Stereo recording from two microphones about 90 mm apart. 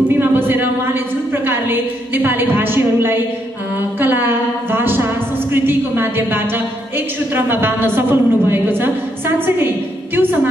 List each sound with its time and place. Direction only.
0.2 s a woman's voice: 25° right (ahead or behind)